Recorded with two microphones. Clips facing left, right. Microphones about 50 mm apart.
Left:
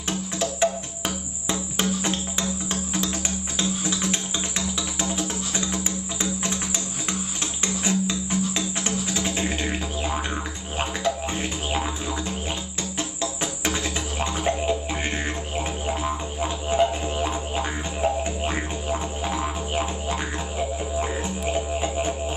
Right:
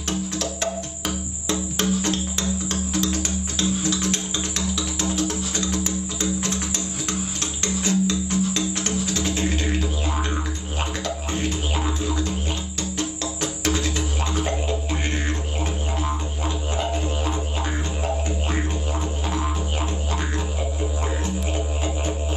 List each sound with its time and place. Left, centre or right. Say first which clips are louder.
0.4 s music: left 3 dB; centre
7.6 s music: right 3 dB; centre